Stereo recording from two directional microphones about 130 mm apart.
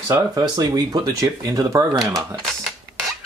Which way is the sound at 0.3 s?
30° right (ahead or behind).